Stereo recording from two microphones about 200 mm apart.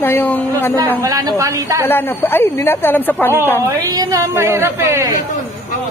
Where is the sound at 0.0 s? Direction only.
10° left (ahead or behind).